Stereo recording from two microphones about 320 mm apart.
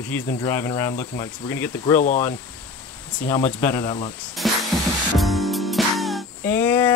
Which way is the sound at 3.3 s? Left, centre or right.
Centre.